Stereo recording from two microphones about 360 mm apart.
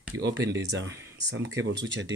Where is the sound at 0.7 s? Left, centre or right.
Right.